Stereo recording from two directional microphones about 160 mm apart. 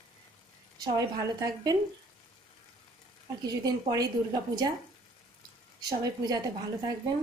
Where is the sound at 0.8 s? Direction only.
25° right (ahead or behind).